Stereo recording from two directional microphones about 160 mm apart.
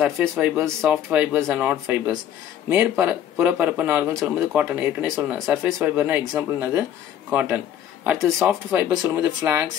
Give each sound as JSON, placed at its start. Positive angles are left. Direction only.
{"t": 0.2, "sound": "speech", "side_deg": -10}